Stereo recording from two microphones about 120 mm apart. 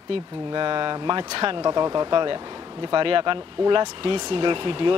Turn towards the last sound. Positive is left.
turn(degrees=-45)  # may be behind; listen again after turning